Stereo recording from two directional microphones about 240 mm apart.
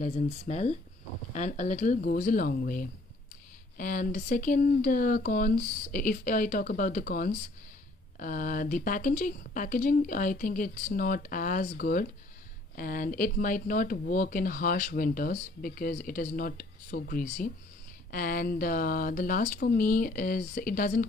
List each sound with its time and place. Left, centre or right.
0.0 s speech: left